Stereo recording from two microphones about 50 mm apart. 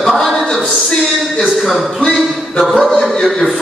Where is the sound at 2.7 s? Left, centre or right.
Left.